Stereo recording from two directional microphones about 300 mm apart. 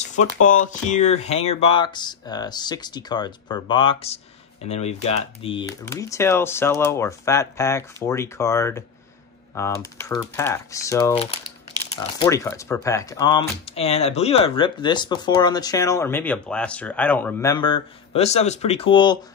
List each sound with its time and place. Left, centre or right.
0.0 s speech: left